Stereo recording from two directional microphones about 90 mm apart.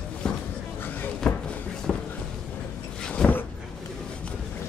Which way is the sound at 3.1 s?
15° left (ahead or behind).